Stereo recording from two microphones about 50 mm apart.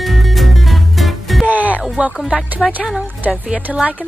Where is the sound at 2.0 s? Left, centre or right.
Right.